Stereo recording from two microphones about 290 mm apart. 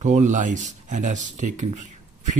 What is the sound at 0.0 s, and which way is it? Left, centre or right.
Speech, right.